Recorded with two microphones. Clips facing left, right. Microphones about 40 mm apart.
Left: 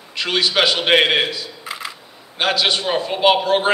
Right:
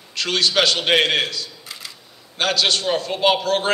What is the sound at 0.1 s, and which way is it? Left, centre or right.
A man's voice, centre.